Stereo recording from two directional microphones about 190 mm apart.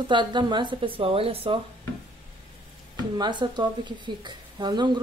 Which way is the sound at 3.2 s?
25° right (ahead or behind).